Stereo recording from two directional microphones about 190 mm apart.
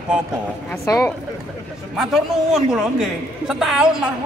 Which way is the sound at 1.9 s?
Centre (ahead or behind).